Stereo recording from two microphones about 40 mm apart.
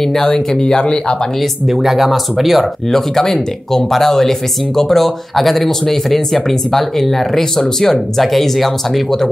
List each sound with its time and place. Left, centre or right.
0.0 s speech: centre
1.7 s speech: centre
3.2 s speech: centre